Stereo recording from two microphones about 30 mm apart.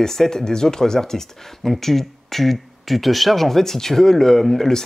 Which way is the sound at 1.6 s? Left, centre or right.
Centre.